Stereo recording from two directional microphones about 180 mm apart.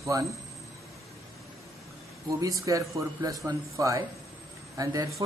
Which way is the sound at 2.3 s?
15° right (ahead or behind).